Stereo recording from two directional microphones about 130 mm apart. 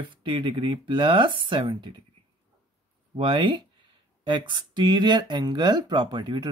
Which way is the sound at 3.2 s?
40° right (ahead or behind).